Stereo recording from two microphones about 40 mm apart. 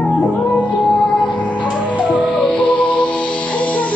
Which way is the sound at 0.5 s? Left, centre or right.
Left.